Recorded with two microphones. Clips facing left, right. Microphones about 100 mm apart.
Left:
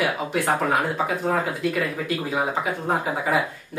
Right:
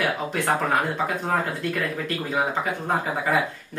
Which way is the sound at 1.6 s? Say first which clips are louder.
Left 2 dB; 5° left (ahead or behind).